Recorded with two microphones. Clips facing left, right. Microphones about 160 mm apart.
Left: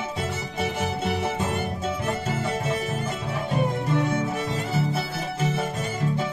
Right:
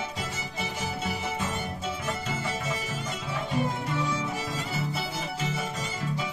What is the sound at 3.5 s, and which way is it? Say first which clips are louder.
Music: left 5 dB; 60° left (ahead or behind).